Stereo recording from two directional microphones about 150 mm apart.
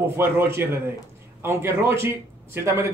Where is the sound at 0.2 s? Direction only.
15° right (ahead or behind).